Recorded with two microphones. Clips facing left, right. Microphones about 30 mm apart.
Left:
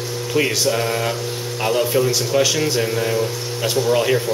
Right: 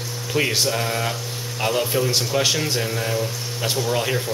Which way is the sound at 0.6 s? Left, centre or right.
Centre.